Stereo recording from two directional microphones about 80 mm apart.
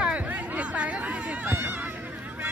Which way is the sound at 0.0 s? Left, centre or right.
Centre.